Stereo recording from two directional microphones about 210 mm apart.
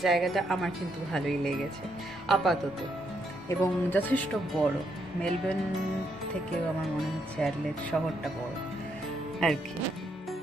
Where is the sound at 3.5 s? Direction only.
10° left (ahead or behind).